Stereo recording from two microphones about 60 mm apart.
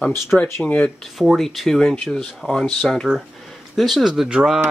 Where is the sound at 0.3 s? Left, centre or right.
Centre.